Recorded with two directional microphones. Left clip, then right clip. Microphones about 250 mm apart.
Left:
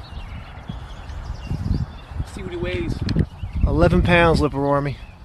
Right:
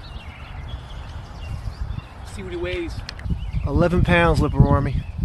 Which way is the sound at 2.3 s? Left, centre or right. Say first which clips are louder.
Even; centre.